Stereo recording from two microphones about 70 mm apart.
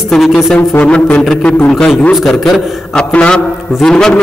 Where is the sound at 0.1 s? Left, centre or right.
Centre.